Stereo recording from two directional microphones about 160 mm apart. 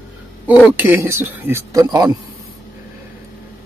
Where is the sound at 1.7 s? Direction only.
25° right (ahead or behind).